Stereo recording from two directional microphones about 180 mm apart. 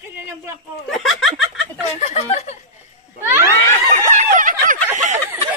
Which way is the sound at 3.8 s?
40° right (ahead or behind).